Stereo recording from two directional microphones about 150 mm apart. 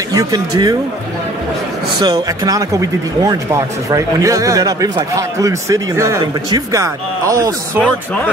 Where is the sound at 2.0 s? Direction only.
25° right (ahead or behind).